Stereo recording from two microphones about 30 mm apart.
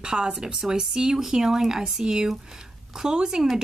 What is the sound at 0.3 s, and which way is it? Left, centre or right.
Speech, centre.